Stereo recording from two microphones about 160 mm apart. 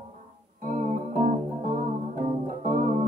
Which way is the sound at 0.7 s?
55° right (ahead or behind).